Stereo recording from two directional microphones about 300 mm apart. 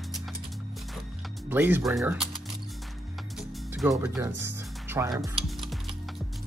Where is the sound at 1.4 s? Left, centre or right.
Centre.